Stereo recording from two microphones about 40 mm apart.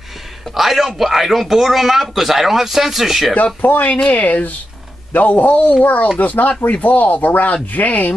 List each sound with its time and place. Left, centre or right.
0.6 s a man's voice: centre
3.6 s speech: left
4.1 s speech: left